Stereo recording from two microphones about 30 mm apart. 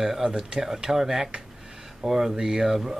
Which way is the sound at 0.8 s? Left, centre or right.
Centre.